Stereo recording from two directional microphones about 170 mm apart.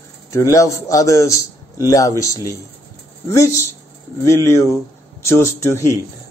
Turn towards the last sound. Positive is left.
turn(degrees=15)  # may be behind; listen again after turning